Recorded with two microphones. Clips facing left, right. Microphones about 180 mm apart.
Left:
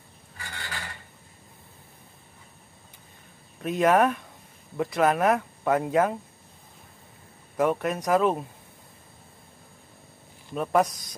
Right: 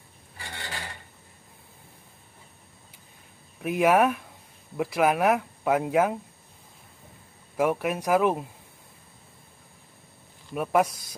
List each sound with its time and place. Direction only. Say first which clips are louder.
0.4 s filing: right 1 dB; 25° right (ahead or behind)
3.5 s speech: even; 10° right (ahead or behind)
7.5 s speech: even; 10° right (ahead or behind)
10.5 s speech: even; 5° right (ahead or behind)